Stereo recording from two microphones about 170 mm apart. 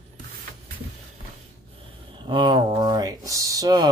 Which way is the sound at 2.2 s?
30° right (ahead or behind).